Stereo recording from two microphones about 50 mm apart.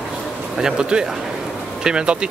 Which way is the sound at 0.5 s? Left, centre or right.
Centre.